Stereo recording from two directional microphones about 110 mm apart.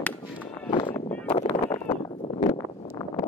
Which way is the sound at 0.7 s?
50° left (ahead or behind).